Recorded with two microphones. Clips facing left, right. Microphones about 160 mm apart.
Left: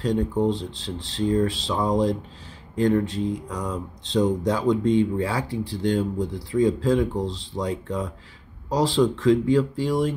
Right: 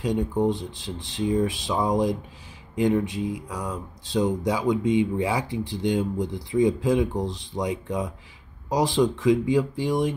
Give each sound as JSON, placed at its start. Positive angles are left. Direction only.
{"t": 0.0, "sound": "speech", "side_deg": -15}